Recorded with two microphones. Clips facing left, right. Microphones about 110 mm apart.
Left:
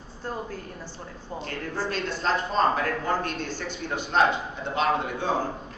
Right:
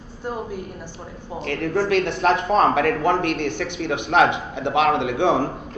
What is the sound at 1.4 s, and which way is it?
A man's voice, 70° right (ahead or behind).